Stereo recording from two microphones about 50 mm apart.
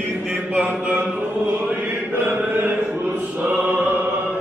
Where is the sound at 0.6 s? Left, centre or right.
Right.